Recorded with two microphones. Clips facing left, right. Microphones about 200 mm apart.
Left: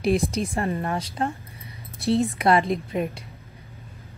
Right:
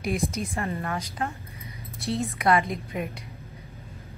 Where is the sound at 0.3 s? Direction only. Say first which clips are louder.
Left 5 dB; 30° left (ahead or behind).